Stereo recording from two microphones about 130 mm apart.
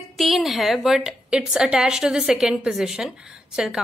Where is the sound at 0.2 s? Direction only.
Centre (ahead or behind).